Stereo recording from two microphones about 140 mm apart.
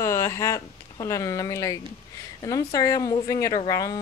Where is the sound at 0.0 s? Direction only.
20° left (ahead or behind).